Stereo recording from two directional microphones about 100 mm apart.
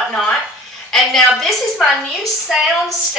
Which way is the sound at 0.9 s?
Centre (ahead or behind).